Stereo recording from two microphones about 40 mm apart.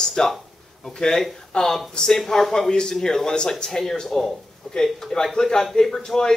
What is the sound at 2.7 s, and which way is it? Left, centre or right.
Speech, centre.